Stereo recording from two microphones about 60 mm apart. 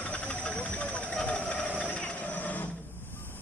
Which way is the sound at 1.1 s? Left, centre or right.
Centre.